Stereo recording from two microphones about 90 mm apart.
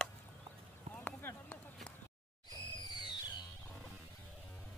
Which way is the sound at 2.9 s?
55° left (ahead or behind).